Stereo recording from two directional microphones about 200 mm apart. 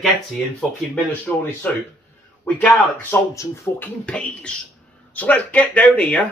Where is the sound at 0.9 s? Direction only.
10° left (ahead or behind).